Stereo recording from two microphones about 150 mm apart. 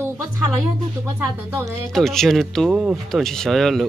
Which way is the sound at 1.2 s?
20° right (ahead or behind).